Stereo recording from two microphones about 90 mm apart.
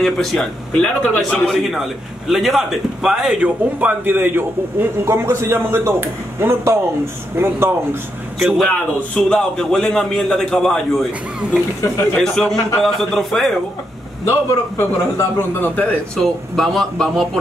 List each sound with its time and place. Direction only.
0.0 s a man's voice: centre (ahead or behind)
1.6 s a man's voice: centre (ahead or behind)
3.4 s a man's voice: 20° right (ahead or behind)
8.4 s a man's voice: centre (ahead or behind)
12.2 s a man's voice: 5° left (ahead or behind)
14.8 s a man's voice: 25° left (ahead or behind)
16.2 s a man's voice: 5° left (ahead or behind)